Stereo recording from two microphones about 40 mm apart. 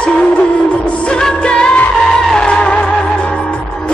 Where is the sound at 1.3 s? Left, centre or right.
Left.